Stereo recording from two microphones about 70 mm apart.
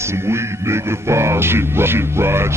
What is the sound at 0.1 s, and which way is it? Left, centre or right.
Speech, right.